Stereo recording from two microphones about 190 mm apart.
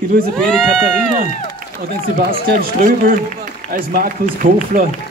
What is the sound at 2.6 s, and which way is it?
Speech, 45° right (ahead or behind).